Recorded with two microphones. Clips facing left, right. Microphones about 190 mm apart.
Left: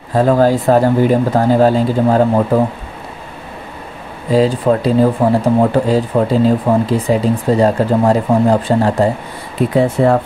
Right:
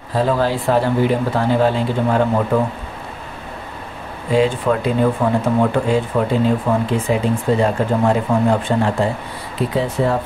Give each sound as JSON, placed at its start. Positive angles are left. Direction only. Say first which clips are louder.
{"t": 0.1, "sound": "speech", "louder": "left 6 dB", "side_deg": 45}
{"t": 4.3, "sound": "speech", "louder": "left 4 dB", "side_deg": 35}